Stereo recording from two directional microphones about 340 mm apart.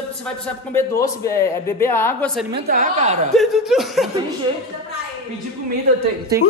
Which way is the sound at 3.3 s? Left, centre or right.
Centre.